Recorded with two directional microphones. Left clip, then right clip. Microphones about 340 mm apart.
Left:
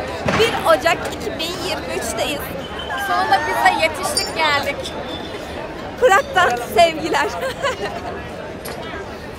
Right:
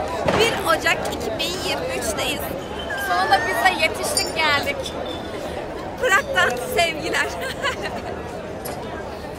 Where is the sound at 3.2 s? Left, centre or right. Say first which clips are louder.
Left 2 dB; centre.